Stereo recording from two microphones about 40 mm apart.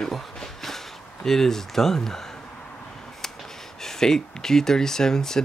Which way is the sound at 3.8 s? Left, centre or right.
Centre.